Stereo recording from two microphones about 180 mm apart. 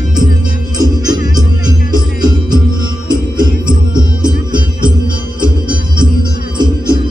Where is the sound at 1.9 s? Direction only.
20° right (ahead or behind).